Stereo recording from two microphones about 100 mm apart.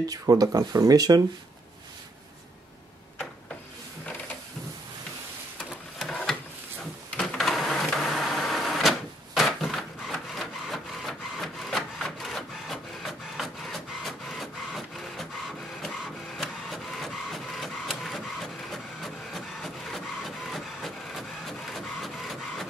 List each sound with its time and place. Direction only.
0.0 s speech: 40° right (ahead or behind)
5.9 s printer: 5° left (ahead or behind)
7.2 s vehicle: centre (ahead or behind)
16.3 s printer: centre (ahead or behind)